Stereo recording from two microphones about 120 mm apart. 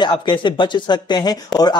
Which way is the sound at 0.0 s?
40° left (ahead or behind).